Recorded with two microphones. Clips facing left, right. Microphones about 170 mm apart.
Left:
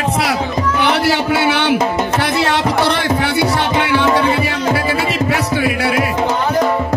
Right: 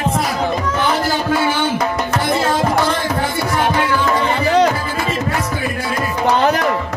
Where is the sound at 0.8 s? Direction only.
75° left (ahead or behind).